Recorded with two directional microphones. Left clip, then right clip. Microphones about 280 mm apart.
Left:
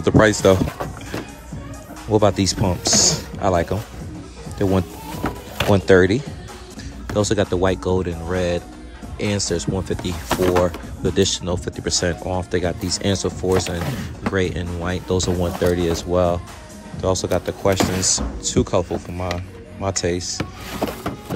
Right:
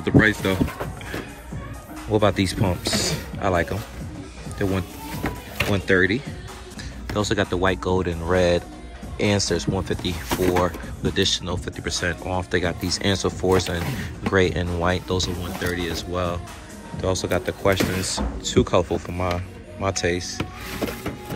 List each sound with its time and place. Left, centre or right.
0.0 s speech: centre
2.0 s speech: centre